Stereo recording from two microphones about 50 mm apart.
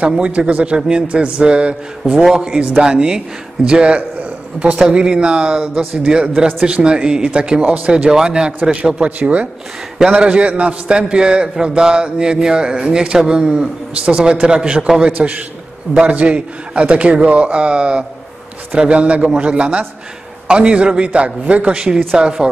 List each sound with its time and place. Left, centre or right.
0.2 s a man's voice: right
15.1 s a man's voice: right